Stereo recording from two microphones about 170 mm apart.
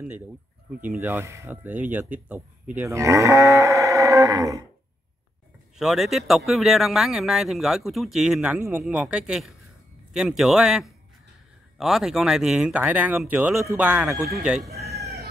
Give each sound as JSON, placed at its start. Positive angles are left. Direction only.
{"t": 0.8, "sound": "speech", "side_deg": -10}
{"t": 2.7, "sound": "livestock", "side_deg": -15}
{"t": 5.8, "sound": "speech", "side_deg": 0}